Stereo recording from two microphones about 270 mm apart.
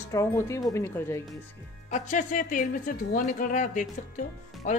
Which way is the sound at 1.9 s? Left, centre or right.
Left.